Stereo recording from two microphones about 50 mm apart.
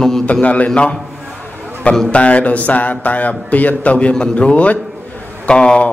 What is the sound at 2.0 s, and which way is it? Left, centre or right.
A man's voice, left.